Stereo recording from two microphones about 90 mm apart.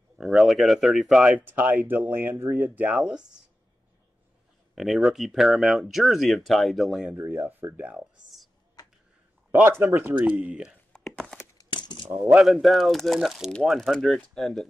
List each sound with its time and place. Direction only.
0.2 s speech: 5° right (ahead or behind)
1.4 s speech: 20° right (ahead or behind)
4.7 s speech: centre (ahead or behind)
7.2 s speech: 20° right (ahead or behind)
9.5 s speech: 25° right (ahead or behind)
10.9 s a sound: 5° left (ahead or behind)
11.5 s a sound: 55° left (ahead or behind)
12.2 s speech: 5° right (ahead or behind)